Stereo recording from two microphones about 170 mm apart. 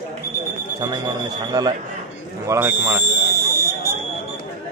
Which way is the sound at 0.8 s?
20° right (ahead or behind).